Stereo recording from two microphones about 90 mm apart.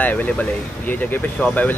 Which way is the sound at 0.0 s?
20° left (ahead or behind).